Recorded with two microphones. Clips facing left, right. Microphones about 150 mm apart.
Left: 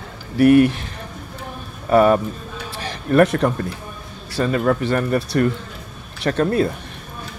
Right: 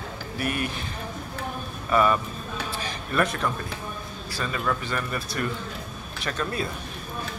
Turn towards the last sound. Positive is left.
turn(degrees=60)  # may be behind; listen again after turning